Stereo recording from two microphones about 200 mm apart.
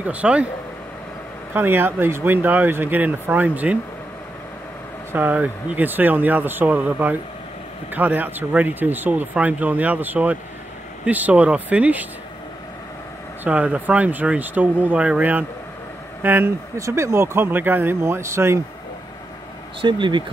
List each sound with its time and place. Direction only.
0.0 s speech: 5° right (ahead or behind)
1.5 s speech: 10° right (ahead or behind)
5.1 s speech: 10° right (ahead or behind)
13.4 s speech: 5° right (ahead or behind)
19.8 s speech: 25° right (ahead or behind)